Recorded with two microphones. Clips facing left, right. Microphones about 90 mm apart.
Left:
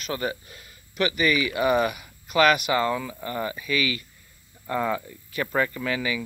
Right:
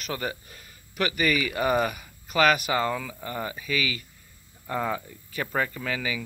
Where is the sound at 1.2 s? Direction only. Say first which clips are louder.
Left 2 dB; 45° right (ahead or behind).